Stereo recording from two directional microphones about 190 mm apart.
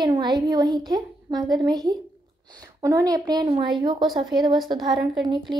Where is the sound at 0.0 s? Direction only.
20° right (ahead or behind).